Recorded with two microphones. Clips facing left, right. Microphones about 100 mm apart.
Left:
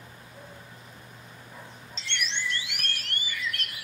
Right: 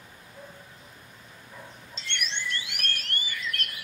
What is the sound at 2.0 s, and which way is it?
Chirp tone, 50° right (ahead or behind).